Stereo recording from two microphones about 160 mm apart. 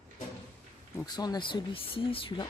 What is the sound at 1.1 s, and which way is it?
Speech, 25° left (ahead or behind).